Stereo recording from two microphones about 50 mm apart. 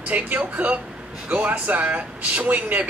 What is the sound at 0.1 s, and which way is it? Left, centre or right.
A man's voice, right.